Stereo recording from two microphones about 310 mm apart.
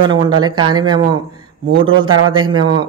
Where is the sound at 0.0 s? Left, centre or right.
Centre.